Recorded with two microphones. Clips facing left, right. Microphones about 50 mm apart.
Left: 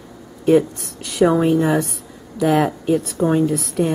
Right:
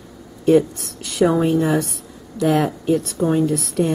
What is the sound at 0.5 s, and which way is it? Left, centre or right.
Speech, centre.